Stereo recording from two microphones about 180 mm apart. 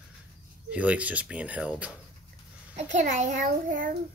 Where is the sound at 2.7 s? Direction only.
40° right (ahead or behind).